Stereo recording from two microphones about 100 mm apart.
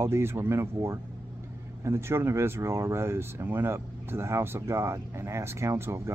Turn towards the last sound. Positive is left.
turn(degrees=-25)  # may be behind; listen again after turning